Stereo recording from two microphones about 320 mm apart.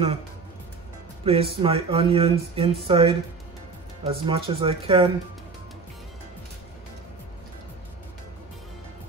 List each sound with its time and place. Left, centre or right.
1.2 s speech: centre